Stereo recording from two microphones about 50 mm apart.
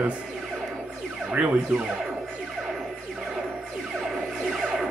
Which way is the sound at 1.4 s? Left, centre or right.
Right.